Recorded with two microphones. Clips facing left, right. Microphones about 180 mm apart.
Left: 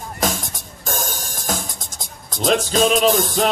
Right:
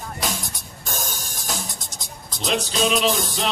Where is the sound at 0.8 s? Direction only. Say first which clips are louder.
Left 5 dB; 50° left (ahead or behind).